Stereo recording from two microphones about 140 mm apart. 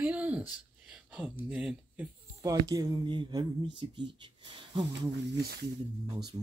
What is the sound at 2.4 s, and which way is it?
Speech, 25° right (ahead or behind).